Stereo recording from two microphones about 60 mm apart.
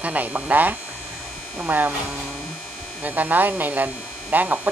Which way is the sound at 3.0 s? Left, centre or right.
Right.